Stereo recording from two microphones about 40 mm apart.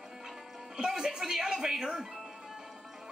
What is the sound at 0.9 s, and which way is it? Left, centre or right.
A woman's voice, centre.